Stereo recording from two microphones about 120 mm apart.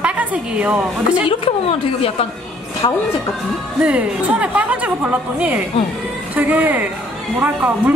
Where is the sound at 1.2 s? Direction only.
50° left (ahead or behind).